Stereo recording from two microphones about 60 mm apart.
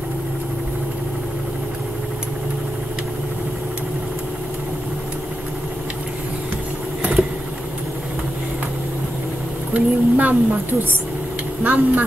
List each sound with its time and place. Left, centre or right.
9.8 s a woman's voice: right